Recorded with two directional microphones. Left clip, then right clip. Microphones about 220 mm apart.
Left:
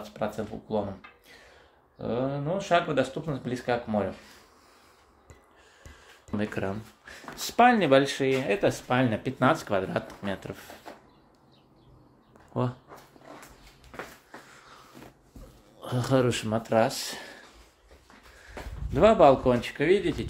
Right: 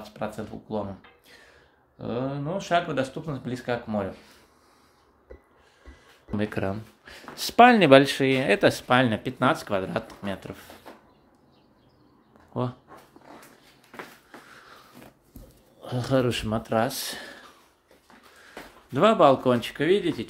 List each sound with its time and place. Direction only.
0.0 s speech: centre (ahead or behind)
6.3 s speech: 20° right (ahead or behind); by 10.7 s centre (ahead or behind)
12.5 s speech: 10° right (ahead or behind)
15.8 s speech: centre (ahead or behind)